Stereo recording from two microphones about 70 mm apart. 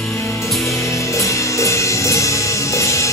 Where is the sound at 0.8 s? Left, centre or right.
Left.